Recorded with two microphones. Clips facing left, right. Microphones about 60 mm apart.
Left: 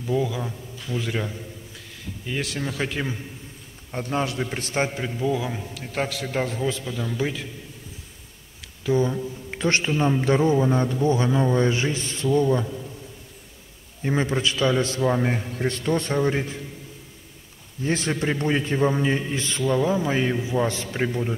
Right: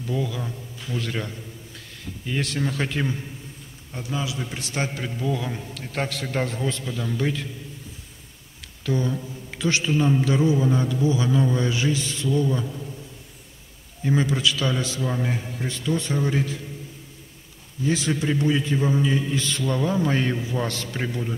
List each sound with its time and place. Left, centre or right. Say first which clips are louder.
0.0 s a man's voice: left 3 dB; centre
3.9 s a man's voice: left 4 dB; left
4.7 s a man's voice: left 3 dB; left
5.0 s a man's voice: left 2 dB; centre
8.8 s a sound: left 3 dB; centre
9.6 s speech: left 2 dB; left
9.8 s a man's voice: right 4 dB; left
10.2 s a man's voice: left 1 dB; left
11.2 s a man's voice: left 2 dB; left
14.0 s a man's voice: right 1 dB; left
15.3 s a man's voice: left 4 dB; left
16.2 s a man's voice: left 2 dB; left
17.8 s a man's voice: right 1 dB; left
19.6 s a man's voice: left 3 dB; centre